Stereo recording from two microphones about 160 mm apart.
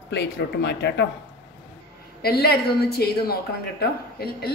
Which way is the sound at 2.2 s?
75° left (ahead or behind).